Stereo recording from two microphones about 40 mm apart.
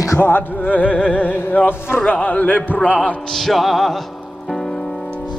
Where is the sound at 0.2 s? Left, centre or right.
Left.